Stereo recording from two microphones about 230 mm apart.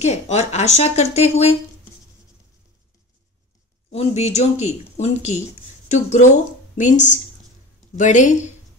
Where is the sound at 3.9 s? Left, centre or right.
Left.